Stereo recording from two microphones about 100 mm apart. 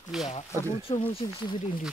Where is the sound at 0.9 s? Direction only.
75° left (ahead or behind).